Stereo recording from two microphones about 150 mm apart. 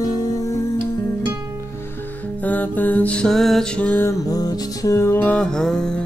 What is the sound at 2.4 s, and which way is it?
Music, 10° left (ahead or behind).